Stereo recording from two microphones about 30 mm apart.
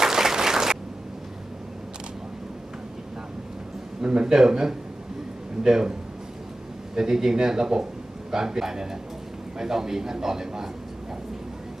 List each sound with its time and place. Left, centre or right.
0.0 s applause: centre
4.0 s a man's voice: right
7.0 s a man's voice: centre